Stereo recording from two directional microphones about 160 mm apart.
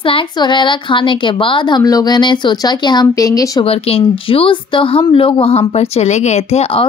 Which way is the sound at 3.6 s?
40° left (ahead or behind).